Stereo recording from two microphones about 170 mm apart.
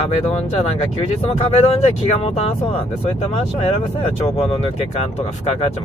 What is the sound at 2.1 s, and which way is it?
Speech, 35° left (ahead or behind).